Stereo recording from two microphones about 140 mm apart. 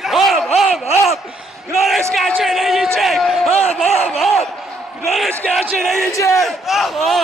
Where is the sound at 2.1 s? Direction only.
Centre (ahead or behind).